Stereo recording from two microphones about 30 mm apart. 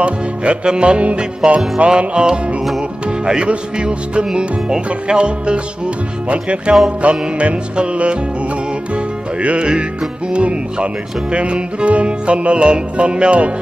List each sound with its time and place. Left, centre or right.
0.0 s music: right
1.4 s music: centre
1.9 s music: right
3.8 s music: right
9.4 s music: right